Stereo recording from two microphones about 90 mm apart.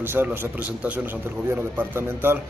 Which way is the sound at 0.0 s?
25° right (ahead or behind).